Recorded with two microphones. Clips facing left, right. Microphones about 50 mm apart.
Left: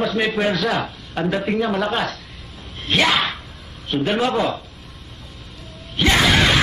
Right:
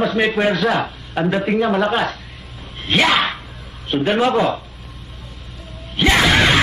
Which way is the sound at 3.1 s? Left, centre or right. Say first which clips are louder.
Right 3 dB; centre.